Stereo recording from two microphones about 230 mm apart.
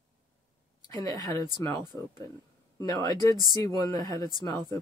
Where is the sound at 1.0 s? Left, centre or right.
Centre.